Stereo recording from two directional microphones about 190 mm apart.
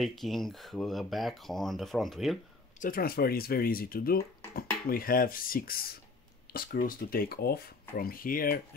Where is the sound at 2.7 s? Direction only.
50° left (ahead or behind).